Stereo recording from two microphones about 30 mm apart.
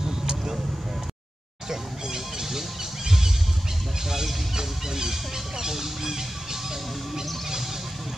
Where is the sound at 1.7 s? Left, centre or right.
Centre.